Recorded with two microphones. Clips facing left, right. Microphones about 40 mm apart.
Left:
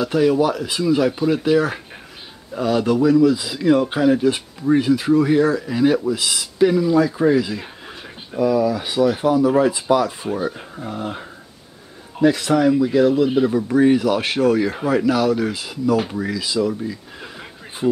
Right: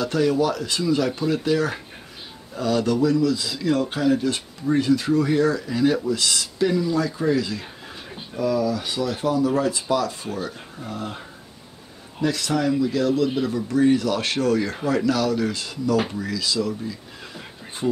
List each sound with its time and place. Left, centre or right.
0.0 s speech: centre
12.2 s speech: left